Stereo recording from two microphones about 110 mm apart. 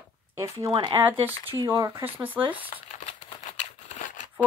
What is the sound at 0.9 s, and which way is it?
Speech, 15° right (ahead or behind).